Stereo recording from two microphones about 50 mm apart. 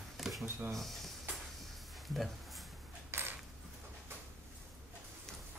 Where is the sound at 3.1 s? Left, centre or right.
Right.